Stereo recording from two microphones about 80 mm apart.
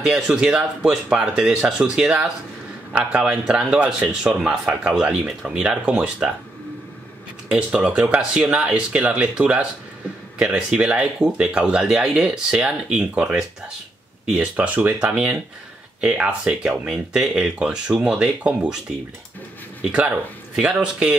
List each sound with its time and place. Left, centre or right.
0.0 s a man's voice: centre
7.4 s a man's voice: centre